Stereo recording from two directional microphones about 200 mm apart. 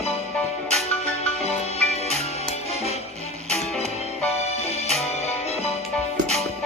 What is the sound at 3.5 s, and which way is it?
Music, centre (ahead or behind).